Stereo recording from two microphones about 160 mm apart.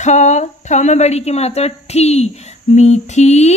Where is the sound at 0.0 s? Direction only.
45° left (ahead or behind).